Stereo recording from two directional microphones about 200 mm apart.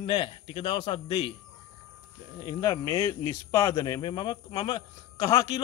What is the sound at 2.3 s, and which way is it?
Speech, 20° left (ahead or behind).